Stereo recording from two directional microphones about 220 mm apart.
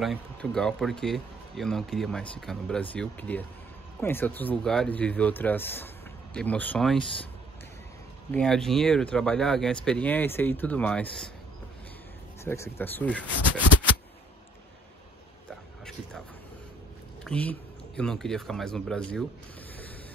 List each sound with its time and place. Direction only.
0.0 s speech: centre (ahead or behind)
8.3 s speech: 5° left (ahead or behind)
12.4 s speech: 10° left (ahead or behind)
17.2 s speech: 5° left (ahead or behind)